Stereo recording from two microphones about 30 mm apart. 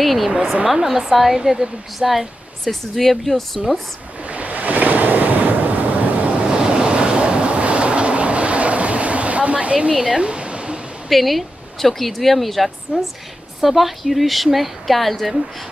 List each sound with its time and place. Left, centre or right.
0.0 s a sound: centre
0.8 s a woman's voice: centre
2.6 s speech: centre
4.3 s waves: right
6.4 s waves: right
10.1 s waterfall: right
11.1 s speech: centre